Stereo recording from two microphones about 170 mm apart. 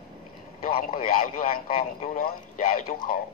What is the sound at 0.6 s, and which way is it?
Speech, 55° left (ahead or behind).